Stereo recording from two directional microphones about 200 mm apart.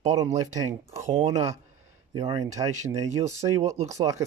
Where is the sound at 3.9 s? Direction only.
15° right (ahead or behind).